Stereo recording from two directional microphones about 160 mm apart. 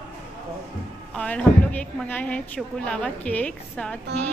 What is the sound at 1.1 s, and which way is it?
A woman's voice, 10° left (ahead or behind).